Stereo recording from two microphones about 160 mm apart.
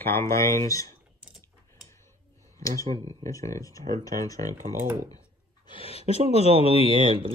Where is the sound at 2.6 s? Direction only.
20° left (ahead or behind).